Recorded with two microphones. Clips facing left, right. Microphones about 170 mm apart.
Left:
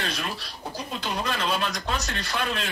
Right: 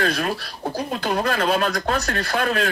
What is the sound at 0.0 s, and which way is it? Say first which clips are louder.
Speech: right 9 dB; 55° right (ahead or behind).